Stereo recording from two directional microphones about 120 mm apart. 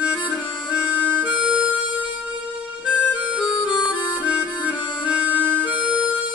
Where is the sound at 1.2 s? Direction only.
10° right (ahead or behind).